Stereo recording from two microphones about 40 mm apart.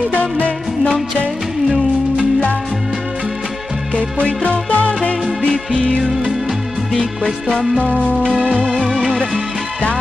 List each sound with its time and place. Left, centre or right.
3.9 s music: left
8.3 s music: centre